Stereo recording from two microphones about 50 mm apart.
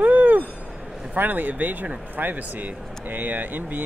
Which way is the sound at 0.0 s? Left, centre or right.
Right.